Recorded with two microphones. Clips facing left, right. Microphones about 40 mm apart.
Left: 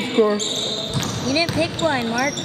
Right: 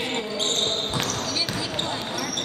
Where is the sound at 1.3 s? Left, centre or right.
Left.